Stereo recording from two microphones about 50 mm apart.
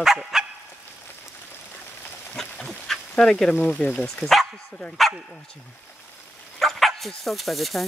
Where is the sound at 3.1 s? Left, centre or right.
Centre.